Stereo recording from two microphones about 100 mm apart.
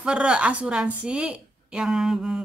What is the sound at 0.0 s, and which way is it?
A woman's voice, 10° right (ahead or behind).